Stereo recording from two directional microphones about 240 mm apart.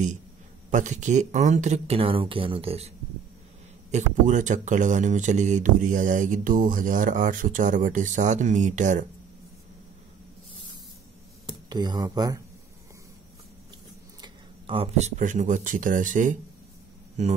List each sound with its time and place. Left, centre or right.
0.7 s speech: right
3.9 s speech: right
11.7 s speech: centre
14.2 s speech: right